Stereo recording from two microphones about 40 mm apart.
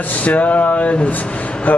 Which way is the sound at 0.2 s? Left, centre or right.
Left.